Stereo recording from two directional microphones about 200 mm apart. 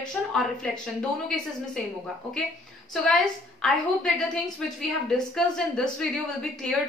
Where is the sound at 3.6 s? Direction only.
5° left (ahead or behind).